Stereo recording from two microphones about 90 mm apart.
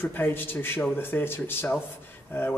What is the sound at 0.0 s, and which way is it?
Speech, 20° left (ahead or behind).